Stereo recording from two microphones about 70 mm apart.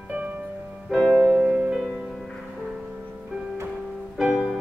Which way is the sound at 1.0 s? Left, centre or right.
Centre.